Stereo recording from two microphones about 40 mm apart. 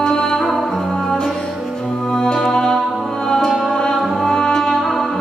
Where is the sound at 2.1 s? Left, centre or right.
Centre.